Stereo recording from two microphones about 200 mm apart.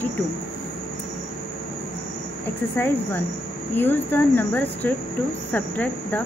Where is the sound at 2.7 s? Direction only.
10° left (ahead or behind).